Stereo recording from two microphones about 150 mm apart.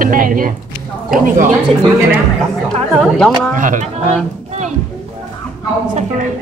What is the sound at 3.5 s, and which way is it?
Speech, 60° right (ahead or behind).